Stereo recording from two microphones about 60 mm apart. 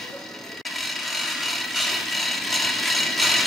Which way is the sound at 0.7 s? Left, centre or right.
Centre.